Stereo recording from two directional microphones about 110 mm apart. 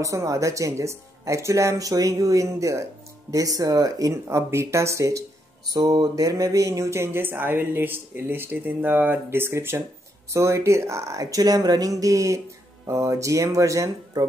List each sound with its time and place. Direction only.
0.0 s speech: 30° right (ahead or behind)